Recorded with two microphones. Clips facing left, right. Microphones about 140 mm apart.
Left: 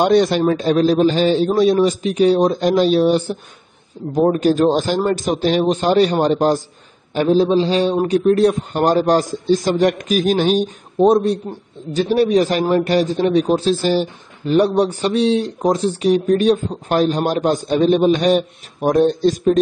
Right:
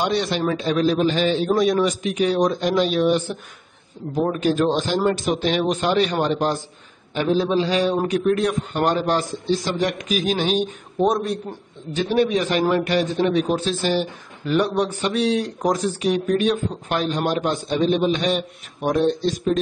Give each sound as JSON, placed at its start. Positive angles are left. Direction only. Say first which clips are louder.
{"t": 0.0, "sound": "a man's voice", "louder": "left 8 dB", "side_deg": 45}
{"t": 11.0, "sound": "a man's voice", "louder": "left 7 dB", "side_deg": 30}